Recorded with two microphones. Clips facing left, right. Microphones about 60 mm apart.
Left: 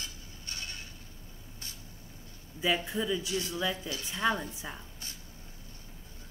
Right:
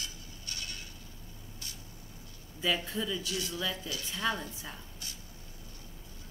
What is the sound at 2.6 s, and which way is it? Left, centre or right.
Speech, centre.